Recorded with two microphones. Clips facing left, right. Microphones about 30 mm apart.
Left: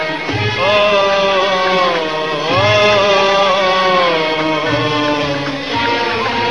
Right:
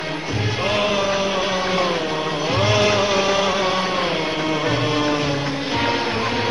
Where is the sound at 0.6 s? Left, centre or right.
Left.